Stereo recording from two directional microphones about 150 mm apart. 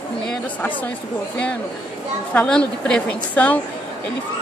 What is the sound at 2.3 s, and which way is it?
A woman's voice, 5° left (ahead or behind).